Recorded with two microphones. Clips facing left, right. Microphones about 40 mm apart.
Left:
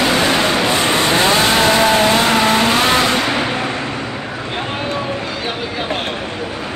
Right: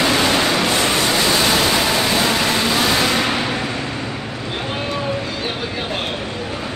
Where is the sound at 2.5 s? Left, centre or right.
Left.